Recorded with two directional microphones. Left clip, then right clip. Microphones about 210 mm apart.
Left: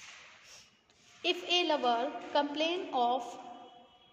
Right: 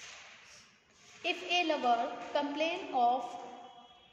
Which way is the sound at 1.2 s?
40° left (ahead or behind).